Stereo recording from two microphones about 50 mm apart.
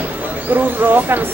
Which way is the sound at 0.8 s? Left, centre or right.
Right.